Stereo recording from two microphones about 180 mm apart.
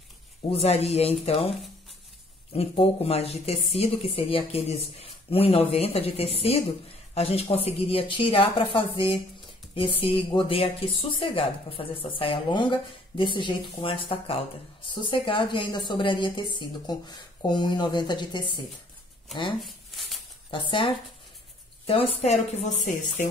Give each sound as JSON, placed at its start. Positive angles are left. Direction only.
{"t": 0.5, "sound": "speech", "side_deg": 35}
{"t": 2.5, "sound": "a woman's voice", "side_deg": 35}
{"t": 19.6, "sound": "a sound", "side_deg": 0}
{"t": 21.8, "sound": "speech", "side_deg": 30}